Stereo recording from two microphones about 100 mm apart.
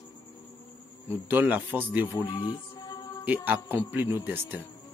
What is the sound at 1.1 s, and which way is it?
Speech, 20° right (ahead or behind).